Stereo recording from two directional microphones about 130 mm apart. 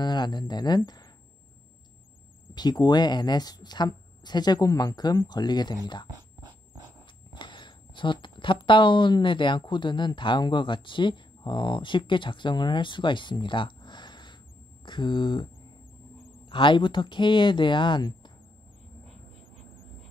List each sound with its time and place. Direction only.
0.0 s a woman's voice: 35° left (ahead or behind)
2.5 s a woman's voice: 30° left (ahead or behind)
6.0 s dog: 30° right (ahead or behind)
7.3 s a woman's voice: 35° left (ahead or behind)
16.4 s a woman's voice: 40° left (ahead or behind)